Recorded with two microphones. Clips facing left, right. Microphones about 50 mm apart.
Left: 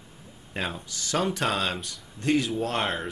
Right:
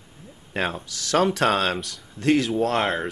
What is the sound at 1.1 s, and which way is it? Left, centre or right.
Speech, right.